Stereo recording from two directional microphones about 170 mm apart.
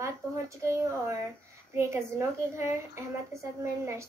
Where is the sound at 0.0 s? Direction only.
15° right (ahead or behind).